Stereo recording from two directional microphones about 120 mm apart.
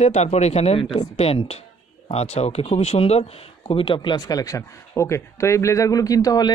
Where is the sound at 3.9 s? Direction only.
35° left (ahead or behind).